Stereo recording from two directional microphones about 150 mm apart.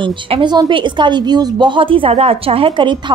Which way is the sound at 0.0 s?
35° right (ahead or behind).